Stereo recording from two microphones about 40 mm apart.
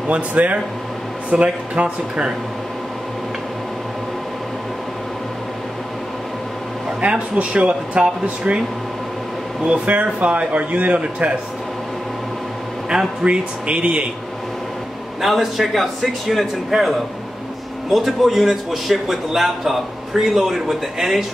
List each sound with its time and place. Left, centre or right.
0.1 s speech: right
7.0 s speech: right
9.8 s speech: right
12.9 s a man's voice: right
15.2 s speech: centre